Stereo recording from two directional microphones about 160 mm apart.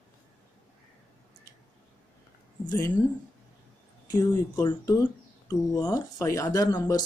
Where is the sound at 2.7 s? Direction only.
25° left (ahead or behind).